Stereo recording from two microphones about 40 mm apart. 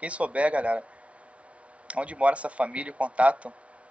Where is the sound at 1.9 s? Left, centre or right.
Right.